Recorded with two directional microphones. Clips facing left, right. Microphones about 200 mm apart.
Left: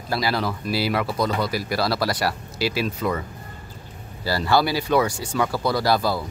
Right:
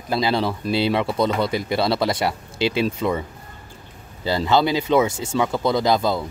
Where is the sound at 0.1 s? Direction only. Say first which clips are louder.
Right 3 dB; 25° right (ahead or behind).